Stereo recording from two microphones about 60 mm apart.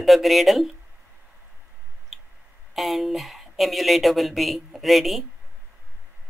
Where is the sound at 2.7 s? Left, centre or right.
Centre.